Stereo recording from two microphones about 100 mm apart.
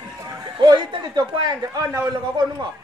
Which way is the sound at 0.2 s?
40° right (ahead or behind).